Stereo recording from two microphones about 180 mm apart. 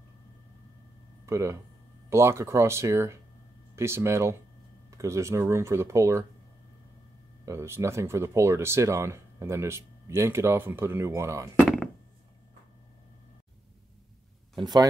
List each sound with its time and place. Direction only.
1.2 s speech: 15° right (ahead or behind)
7.4 s speech: 15° right (ahead or behind)
14.5 s speech: 25° right (ahead or behind)